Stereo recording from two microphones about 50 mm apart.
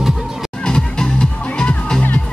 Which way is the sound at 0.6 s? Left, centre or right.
Centre.